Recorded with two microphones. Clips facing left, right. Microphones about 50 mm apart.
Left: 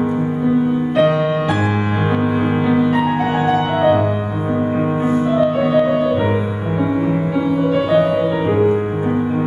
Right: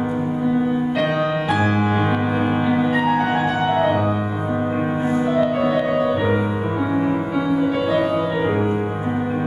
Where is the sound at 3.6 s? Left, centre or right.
Centre.